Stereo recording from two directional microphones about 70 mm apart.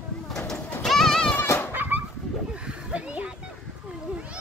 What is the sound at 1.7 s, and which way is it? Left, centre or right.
Fowl, right.